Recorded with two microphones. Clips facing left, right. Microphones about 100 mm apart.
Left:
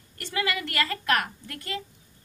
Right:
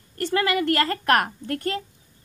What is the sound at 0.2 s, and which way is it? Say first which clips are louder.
A woman's voice: right 7 dB; 40° right (ahead or behind).